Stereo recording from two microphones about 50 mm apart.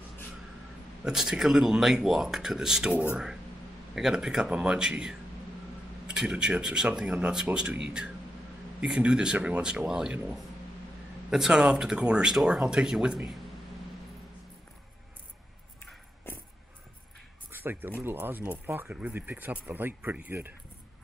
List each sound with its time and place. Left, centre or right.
1.0 s speech: centre
3.9 s speech: centre
8.8 s speech: centre
11.2 s speech: centre
16.3 s a sound: left
17.5 s speech: right
18.9 s speech: right
19.1 s speech: right